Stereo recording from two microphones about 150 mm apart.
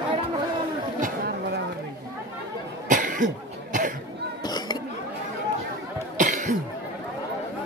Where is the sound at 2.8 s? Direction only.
60° right (ahead or behind).